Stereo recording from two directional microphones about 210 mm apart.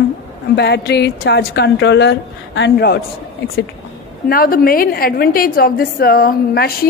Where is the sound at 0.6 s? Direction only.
55° left (ahead or behind).